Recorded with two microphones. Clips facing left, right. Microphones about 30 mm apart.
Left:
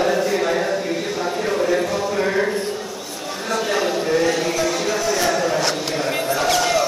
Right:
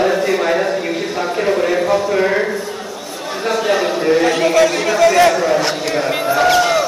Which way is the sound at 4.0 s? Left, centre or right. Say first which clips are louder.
Right 6 dB; right.